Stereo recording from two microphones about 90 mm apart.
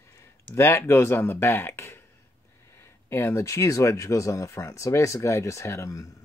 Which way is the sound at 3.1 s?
30° left (ahead or behind).